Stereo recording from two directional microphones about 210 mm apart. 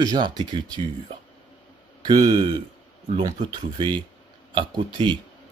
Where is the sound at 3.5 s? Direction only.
20° right (ahead or behind).